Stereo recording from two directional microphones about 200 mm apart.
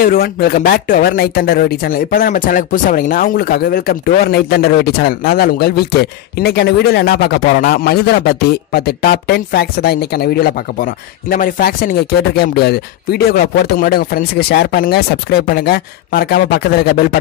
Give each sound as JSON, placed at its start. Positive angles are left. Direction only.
{"t": 0.0, "sound": "speech", "side_deg": 50}